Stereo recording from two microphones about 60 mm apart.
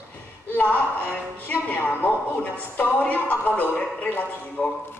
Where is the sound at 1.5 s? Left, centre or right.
Left.